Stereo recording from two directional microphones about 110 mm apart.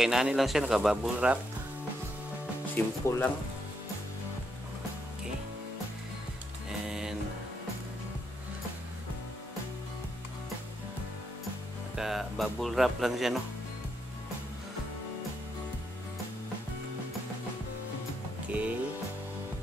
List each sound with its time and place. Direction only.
0.0 s speech: 5° right (ahead or behind)
2.7 s speech: 20° left (ahead or behind)
6.9 s music: 5° right (ahead or behind)
11.9 s speech: 5° right (ahead or behind)
18.5 s music: 10° right (ahead or behind)